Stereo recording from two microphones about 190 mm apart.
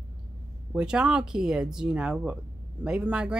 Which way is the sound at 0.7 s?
5° right (ahead or behind).